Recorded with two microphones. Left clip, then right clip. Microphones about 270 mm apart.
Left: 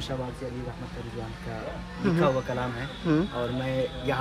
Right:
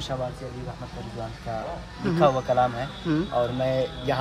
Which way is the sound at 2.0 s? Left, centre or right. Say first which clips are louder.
Right 4 dB; centre.